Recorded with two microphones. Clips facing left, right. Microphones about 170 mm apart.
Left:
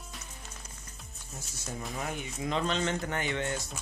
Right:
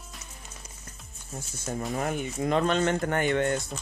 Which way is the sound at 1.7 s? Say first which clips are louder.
Right 7 dB; 50° right (ahead or behind).